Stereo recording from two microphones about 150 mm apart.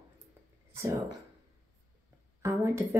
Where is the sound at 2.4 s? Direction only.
15° right (ahead or behind).